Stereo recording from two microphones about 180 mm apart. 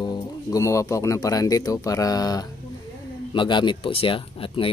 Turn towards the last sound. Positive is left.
turn(degrees=30)  # may be behind; listen again after turning